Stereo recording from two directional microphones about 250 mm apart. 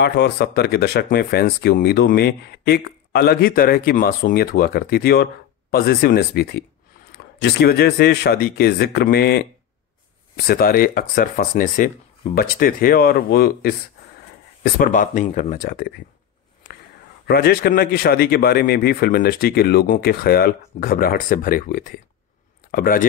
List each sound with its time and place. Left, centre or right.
0.0 s speech: left
17.3 s speech: left